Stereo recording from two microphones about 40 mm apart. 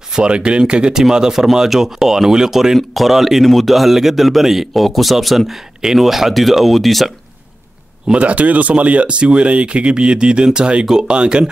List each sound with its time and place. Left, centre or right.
0.1 s a man's voice: right; by 7.1 s centre
8.1 s speech: right